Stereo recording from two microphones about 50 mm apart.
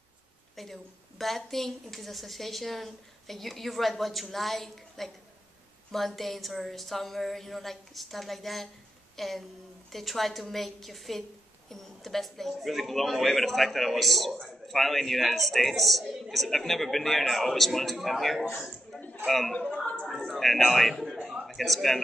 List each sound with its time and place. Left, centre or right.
0.6 s a woman's voice: centre
19.5 s speech: left
20.2 s speech: centre